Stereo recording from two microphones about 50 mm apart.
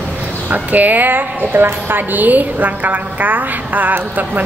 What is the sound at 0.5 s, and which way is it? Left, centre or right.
A woman's voice, right.